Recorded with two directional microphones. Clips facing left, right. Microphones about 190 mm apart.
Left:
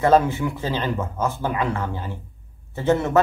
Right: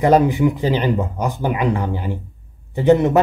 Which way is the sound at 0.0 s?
15° right (ahead or behind).